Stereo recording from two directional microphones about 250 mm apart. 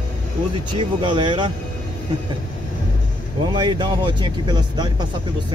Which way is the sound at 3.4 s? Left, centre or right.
Centre.